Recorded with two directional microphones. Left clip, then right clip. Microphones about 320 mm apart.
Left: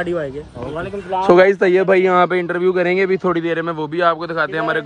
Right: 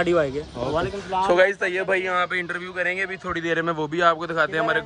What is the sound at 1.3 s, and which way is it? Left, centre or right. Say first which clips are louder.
A man's voice: left 9 dB; centre.